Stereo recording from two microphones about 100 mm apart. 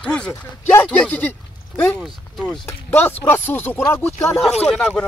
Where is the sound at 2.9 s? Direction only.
20° left (ahead or behind).